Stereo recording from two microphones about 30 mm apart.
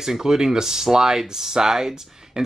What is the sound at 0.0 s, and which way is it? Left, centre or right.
Speech, centre.